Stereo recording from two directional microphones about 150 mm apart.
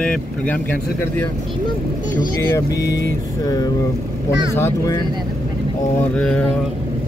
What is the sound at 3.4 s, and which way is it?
Speech, 25° left (ahead or behind).